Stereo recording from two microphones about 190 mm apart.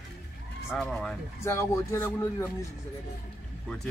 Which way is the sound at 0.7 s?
Centre (ahead or behind).